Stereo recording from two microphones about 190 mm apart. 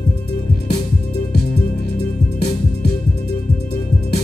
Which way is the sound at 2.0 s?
60° left (ahead or behind).